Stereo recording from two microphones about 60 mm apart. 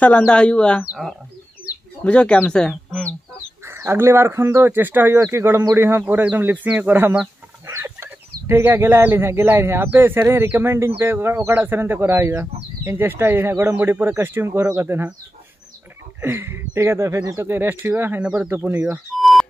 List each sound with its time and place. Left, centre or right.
0.0 s speech: left
2.0 s speech: centre
3.6 s speech: right
5.2 s speech: right
7.6 s speech: right
16.2 s speech: right
17.5 s speech: right